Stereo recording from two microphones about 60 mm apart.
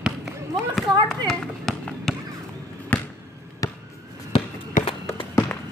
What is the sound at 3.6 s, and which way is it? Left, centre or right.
Basketball bounce, left.